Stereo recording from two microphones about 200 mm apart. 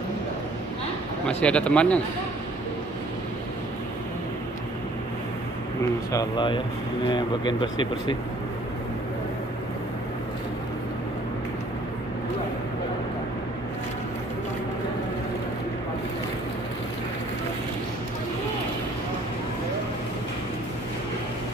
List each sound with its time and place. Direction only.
1.4 s speech: 5° left (ahead or behind)
6.1 s speech: 25° left (ahead or behind)